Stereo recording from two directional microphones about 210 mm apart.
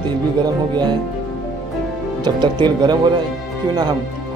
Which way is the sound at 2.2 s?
20° right (ahead or behind).